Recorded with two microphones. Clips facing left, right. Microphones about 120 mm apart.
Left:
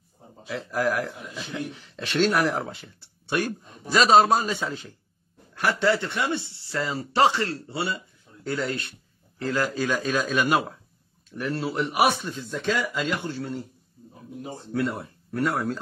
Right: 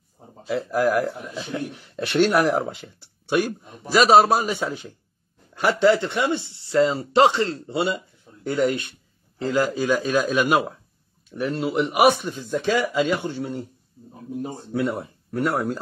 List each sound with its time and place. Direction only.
1.4 s speech: 15° right (ahead or behind)
14.7 s speech: 15° right (ahead or behind)